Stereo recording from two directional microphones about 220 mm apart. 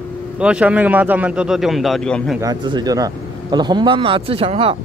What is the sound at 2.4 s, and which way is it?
Speech, 20° right (ahead or behind).